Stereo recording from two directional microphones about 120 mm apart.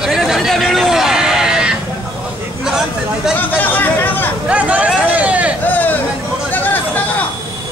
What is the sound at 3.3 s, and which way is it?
Chatter, 15° left (ahead or behind).